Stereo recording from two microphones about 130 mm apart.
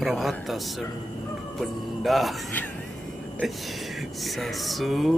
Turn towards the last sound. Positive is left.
turn(degrees=0)  # may be behind; listen again after turning